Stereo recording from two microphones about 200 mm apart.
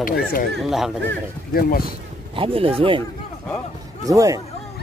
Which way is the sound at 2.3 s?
25° right (ahead or behind).